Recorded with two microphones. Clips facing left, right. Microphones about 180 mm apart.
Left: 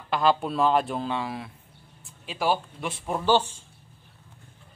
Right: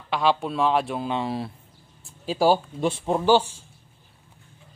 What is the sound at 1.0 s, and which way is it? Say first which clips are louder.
Speech: right 3 dB; 25° right (ahead or behind).